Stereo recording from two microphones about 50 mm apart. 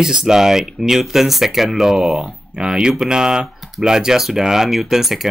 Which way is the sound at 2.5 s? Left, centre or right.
Centre.